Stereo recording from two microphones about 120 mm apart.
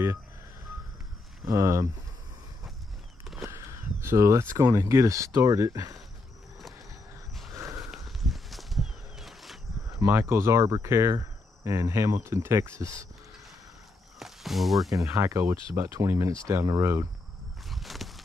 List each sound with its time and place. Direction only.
1.5 s speech: 25° right (ahead or behind)
3.4 s a sound: 20° right (ahead or behind)
4.6 s speech: 25° right (ahead or behind)
7.5 s a sound: 25° right (ahead or behind)
7.8 s a sound: centre (ahead or behind)
9.9 s speech: 20° right (ahead or behind)
14.2 s speech: centre (ahead or behind)
14.9 s speech: 25° right (ahead or behind)
17.6 s walk: centre (ahead or behind)